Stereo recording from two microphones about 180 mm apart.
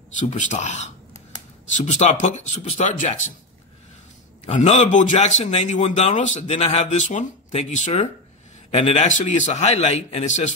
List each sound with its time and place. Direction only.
0.3 s a man's voice: 40° left (ahead or behind)
4.5 s a man's voice: 40° left (ahead or behind)